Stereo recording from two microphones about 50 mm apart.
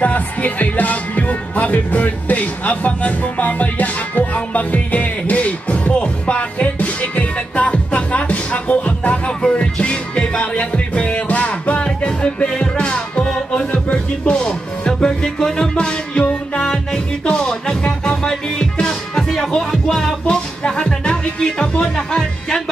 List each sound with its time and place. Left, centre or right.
0.0 s music: left
16.6 s music: centre
20.2 s music: centre